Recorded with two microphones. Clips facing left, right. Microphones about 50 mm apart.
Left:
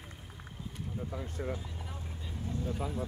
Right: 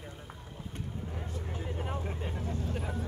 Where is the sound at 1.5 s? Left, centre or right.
Right.